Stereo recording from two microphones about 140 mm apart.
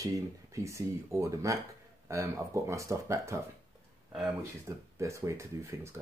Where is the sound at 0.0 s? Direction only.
20° right (ahead or behind).